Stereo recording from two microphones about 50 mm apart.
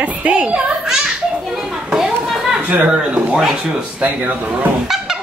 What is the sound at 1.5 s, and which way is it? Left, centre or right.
Children playing, centre.